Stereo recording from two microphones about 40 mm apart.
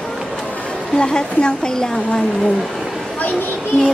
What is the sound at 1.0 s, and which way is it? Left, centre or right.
Speech, left.